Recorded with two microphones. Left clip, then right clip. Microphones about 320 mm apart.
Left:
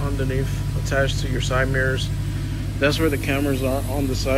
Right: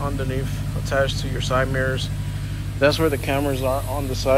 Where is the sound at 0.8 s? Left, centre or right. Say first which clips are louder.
Right 1 dB; centre.